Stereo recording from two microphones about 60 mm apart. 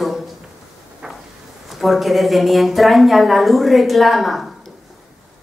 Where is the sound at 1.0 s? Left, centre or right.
Centre.